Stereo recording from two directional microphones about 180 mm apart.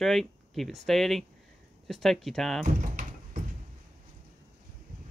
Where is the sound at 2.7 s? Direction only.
45° right (ahead or behind).